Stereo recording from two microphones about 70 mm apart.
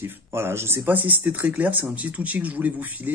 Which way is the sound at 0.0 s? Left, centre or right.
Right.